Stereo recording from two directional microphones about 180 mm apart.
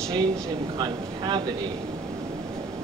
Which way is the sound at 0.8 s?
25° right (ahead or behind).